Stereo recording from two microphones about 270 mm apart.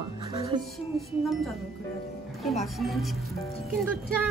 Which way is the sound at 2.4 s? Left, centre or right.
Centre.